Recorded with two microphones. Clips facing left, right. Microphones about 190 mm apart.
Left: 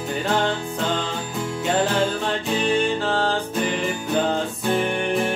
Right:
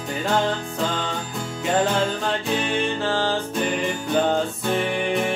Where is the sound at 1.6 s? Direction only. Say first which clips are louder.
Even; centre (ahead or behind).